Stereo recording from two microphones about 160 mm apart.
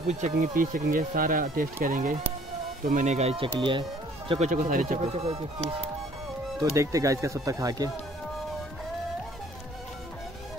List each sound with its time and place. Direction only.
0.1 s speech: 50° right (ahead or behind); by 3.8 s 30° right (ahead or behind)
4.3 s speech: 50° right (ahead or behind)
6.6 s speech: 20° right (ahead or behind)